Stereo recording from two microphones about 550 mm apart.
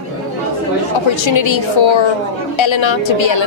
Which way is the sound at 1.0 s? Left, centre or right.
Left.